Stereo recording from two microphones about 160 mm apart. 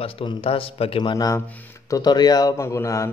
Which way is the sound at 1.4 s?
10° left (ahead or behind).